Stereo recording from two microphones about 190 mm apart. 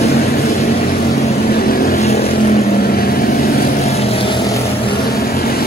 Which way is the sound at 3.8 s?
35° left (ahead or behind).